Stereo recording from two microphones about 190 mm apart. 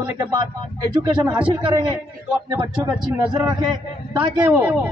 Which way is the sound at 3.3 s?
20° right (ahead or behind).